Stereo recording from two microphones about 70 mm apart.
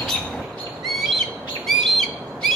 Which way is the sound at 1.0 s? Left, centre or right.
Centre.